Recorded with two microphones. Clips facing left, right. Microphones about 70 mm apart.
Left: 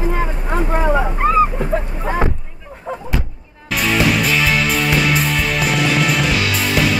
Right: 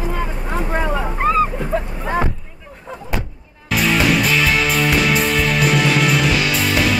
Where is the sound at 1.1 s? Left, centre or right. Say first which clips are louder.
Left 1 dB; centre.